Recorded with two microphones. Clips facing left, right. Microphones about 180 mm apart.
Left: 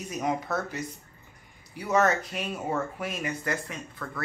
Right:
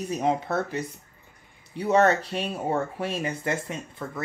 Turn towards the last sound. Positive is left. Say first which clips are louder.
# right 4 dB
turn(degrees=-25)  # may be behind; listen again after turning